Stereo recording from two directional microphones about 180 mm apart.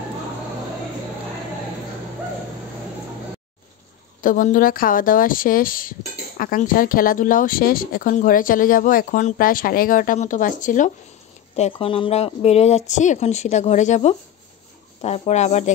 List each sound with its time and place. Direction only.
4.2 s speech: 50° left (ahead or behind)
11.5 s speech: 35° left (ahead or behind)